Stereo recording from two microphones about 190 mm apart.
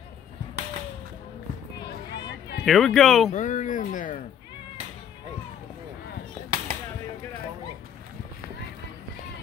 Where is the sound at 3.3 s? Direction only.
40° left (ahead or behind).